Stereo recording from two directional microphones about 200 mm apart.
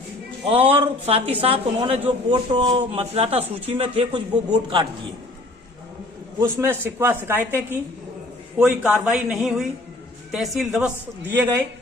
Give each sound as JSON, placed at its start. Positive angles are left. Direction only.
{"t": 0.5, "sound": "speech", "side_deg": -30}
{"t": 6.4, "sound": "a man's voice", "side_deg": -10}